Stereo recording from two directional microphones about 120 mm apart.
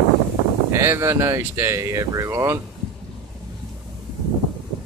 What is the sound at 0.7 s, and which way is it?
Speech, 20° right (ahead or behind).